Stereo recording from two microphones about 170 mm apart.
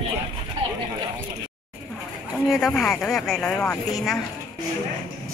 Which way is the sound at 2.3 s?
Centre (ahead or behind).